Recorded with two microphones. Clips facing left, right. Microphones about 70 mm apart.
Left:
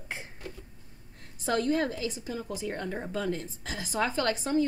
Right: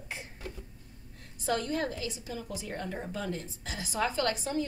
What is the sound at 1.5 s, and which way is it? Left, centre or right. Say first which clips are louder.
A woman's voice: left 4 dB; left.